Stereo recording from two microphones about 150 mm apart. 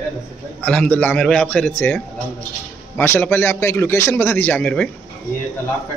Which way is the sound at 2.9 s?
15° left (ahead or behind).